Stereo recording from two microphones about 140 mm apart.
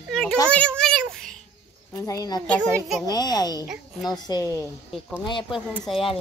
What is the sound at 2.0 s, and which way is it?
A child's voice, 25° left (ahead or behind).